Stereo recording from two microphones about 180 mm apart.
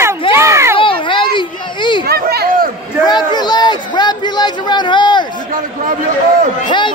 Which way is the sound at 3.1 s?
25° left (ahead or behind).